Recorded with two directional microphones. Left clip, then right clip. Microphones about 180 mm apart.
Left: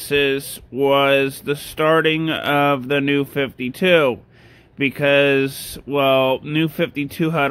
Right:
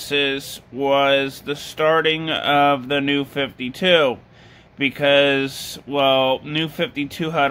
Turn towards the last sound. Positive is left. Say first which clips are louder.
# left 1 dB
turn(degrees=35)  # may be behind; listen again after turning